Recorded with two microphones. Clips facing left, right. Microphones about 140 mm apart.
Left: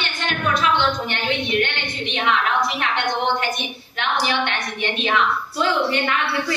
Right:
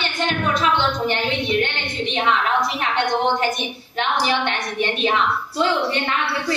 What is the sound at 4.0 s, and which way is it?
A woman's voice, 35° right (ahead or behind).